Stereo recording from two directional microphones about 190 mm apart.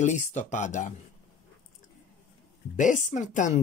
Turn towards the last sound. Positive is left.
turn(degrees=40)  # may be behind; listen again after turning